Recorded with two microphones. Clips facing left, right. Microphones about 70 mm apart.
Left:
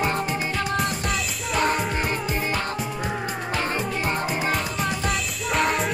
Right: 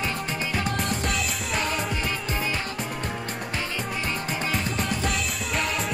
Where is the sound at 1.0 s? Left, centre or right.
Centre.